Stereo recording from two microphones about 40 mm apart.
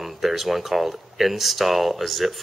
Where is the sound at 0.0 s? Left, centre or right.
Centre.